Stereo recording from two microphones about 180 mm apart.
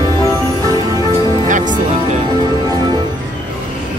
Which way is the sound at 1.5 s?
45° right (ahead or behind).